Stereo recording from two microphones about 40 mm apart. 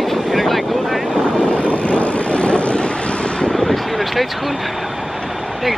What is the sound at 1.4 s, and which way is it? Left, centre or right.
Vehicle, left.